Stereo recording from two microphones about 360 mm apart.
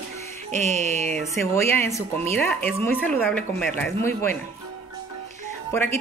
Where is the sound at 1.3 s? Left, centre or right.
Centre.